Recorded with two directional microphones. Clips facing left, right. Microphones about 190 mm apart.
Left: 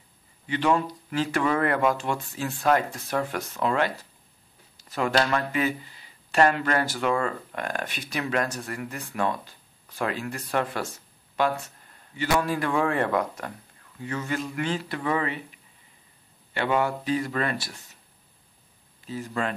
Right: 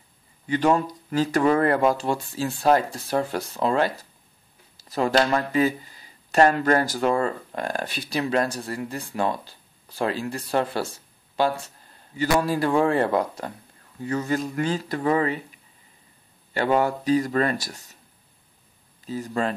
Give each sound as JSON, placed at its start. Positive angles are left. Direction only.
{"t": 0.5, "sound": "speech", "side_deg": -40}
{"t": 16.5, "sound": "speech", "side_deg": -40}
{"t": 19.0, "sound": "speech", "side_deg": -35}